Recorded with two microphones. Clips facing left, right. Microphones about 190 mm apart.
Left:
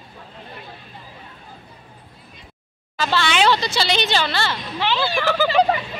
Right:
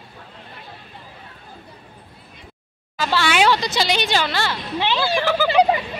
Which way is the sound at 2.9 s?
10° right (ahead or behind).